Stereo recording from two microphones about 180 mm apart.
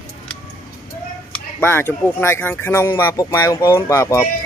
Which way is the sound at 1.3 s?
10° left (ahead or behind).